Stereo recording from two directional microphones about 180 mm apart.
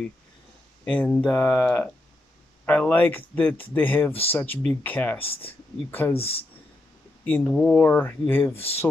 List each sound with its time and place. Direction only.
0.8 s speech: 10° left (ahead or behind)
6.1 s speech: 35° left (ahead or behind)
7.2 s speech: 10° left (ahead or behind)